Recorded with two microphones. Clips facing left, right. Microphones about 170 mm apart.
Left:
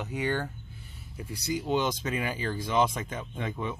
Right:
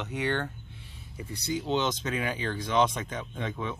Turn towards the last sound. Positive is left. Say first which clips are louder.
# even
turn(degrees=10)  # may be behind; listen again after turning